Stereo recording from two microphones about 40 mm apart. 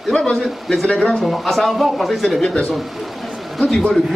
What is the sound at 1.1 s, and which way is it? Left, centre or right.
Speech, centre.